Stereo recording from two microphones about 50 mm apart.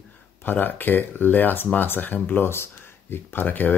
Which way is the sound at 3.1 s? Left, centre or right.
Left.